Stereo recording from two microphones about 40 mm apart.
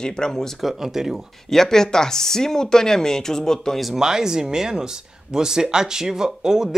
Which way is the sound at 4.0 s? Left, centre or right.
Centre.